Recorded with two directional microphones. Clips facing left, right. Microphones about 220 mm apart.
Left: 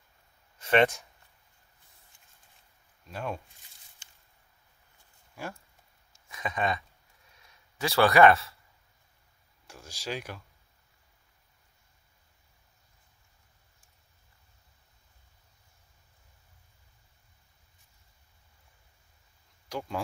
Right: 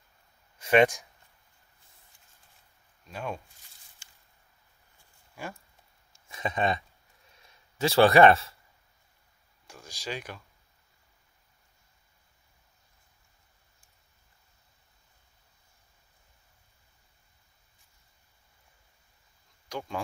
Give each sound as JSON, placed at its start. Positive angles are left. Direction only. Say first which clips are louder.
{"t": 0.6, "sound": "speech", "louder": "right 2 dB", "side_deg": -10}
{"t": 3.1, "sound": "speech", "louder": "even", "side_deg": 0}
{"t": 5.3, "sound": "speech", "louder": "even", "side_deg": 0}
{"t": 6.1, "sound": "a sound", "louder": "right 3 dB", "side_deg": -30}
{"t": 7.7, "sound": "speech", "louder": "right 3 dB", "side_deg": -25}
{"t": 9.7, "sound": "speech", "louder": "left 1 dB", "side_deg": 5}
{"t": 19.7, "sound": "speech", "louder": "left 1 dB", "side_deg": 0}